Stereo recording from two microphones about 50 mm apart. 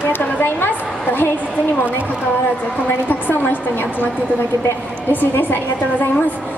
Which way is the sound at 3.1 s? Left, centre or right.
Left.